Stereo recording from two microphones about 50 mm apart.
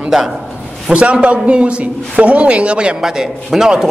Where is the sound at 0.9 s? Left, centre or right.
Right.